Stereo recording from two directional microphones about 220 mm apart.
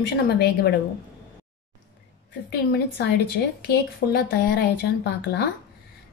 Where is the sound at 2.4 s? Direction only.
50° left (ahead or behind).